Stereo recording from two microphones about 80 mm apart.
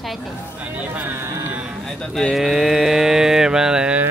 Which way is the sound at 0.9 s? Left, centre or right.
Right.